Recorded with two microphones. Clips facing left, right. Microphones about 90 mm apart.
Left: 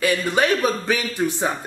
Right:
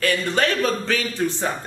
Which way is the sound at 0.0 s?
10° left (ahead or behind).